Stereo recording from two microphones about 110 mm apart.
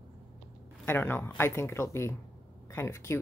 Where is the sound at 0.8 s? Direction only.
20° left (ahead or behind).